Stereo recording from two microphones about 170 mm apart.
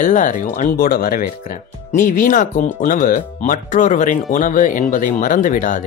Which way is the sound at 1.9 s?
50° left (ahead or behind).